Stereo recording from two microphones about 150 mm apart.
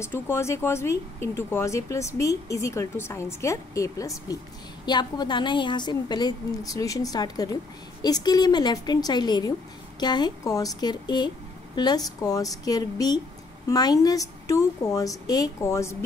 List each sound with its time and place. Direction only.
0.0 s speech: 15° left (ahead or behind)